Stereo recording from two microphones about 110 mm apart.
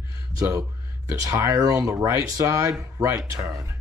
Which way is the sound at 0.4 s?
30° right (ahead or behind).